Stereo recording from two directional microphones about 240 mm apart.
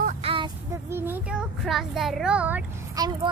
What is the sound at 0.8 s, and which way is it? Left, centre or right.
A child's voice, centre.